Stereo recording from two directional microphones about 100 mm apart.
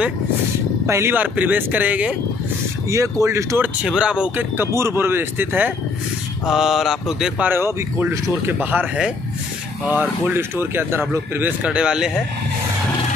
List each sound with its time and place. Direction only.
0.8 s speech: 25° right (ahead or behind)
2.9 s speech: 30° right (ahead or behind)
3.8 s speech: 10° right (ahead or behind)
4.7 s speech: 25° right (ahead or behind)
6.4 s mantra: 5° right (ahead or behind)
7.3 s speech: 20° right (ahead or behind)
10.2 s speech: 20° right (ahead or behind)
11.6 s speech: 10° right (ahead or behind)